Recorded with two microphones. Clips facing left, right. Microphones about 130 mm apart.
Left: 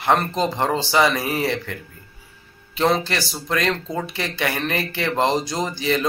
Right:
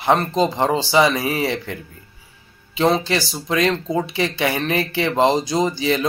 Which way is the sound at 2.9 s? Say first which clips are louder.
Right 3 dB; 15° right (ahead or behind).